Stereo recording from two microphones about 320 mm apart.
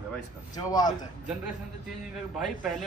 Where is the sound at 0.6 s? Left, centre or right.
Centre.